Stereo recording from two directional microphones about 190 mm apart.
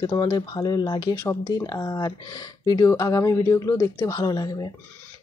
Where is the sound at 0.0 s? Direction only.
20° left (ahead or behind).